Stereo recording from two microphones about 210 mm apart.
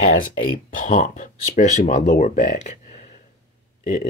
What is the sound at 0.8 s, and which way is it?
Speech, 40° left (ahead or behind).